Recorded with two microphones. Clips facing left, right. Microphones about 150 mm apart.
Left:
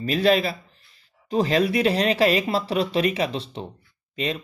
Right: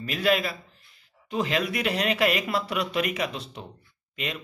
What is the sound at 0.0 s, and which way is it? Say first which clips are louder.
Speech: left 5 dB; 35° left (ahead or behind).